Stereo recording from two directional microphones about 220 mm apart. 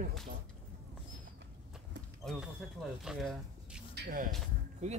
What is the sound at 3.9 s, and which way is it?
Speech, 40° right (ahead or behind).